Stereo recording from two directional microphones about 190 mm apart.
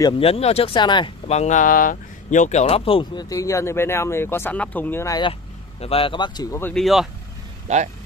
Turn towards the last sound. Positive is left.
turn(degrees=-35)  # may be behind; listen again after turning